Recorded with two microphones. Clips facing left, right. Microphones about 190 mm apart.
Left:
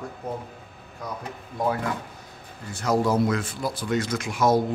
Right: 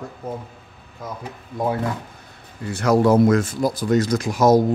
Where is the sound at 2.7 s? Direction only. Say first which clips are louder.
Right 7 dB; 70° right (ahead or behind); by 4.6 s 40° right (ahead or behind).